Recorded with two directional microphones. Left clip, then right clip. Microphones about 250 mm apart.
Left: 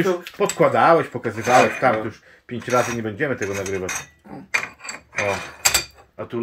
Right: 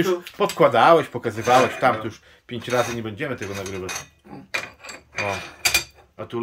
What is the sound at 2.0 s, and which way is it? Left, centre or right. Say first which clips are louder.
Speech: left 1 dB; centre.